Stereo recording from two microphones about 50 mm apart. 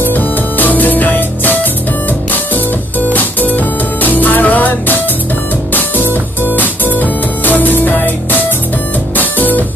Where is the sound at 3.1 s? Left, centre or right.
Left.